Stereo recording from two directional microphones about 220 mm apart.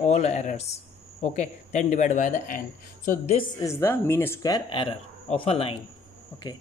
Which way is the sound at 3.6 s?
10° left (ahead or behind).